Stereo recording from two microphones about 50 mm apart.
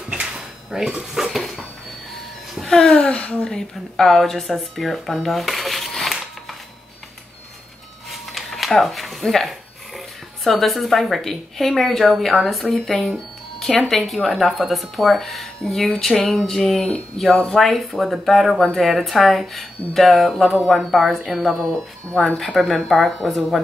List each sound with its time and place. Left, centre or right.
0.7 s speech: centre
1.1 s dishes: centre
2.5 s music: centre
3.0 s a woman's voice: left
3.5 s speech: centre
8.1 s speech: centre